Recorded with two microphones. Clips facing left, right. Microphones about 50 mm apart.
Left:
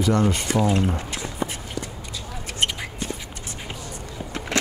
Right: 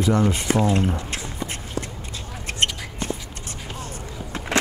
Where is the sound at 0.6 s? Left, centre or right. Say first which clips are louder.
Left 1 dB; right.